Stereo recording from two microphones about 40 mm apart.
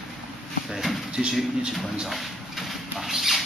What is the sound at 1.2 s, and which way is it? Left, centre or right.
Speech, centre.